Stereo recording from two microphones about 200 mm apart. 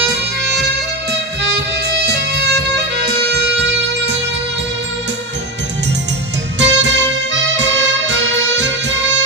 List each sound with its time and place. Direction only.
1.9 s music: 55° right (ahead or behind)
6.6 s music: 60° right (ahead or behind)